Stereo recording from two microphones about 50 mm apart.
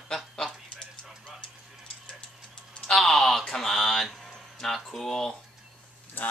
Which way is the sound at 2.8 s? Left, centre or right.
Centre.